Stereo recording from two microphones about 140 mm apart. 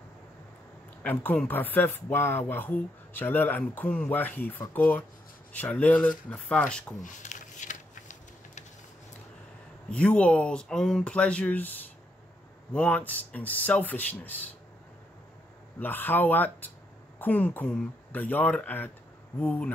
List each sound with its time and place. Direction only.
1.0 s speech: 10° left (ahead or behind)
7.0 s a sound: 65° left (ahead or behind)
9.8 s speech: 10° left (ahead or behind)
12.7 s speech: 10° left (ahead or behind)
15.8 s speech: 15° left (ahead or behind)